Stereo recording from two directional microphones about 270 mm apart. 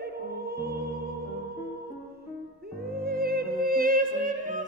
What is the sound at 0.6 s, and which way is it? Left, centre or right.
Music, right.